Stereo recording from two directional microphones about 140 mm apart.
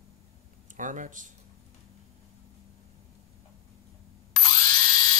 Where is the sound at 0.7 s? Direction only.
65° right (ahead or behind).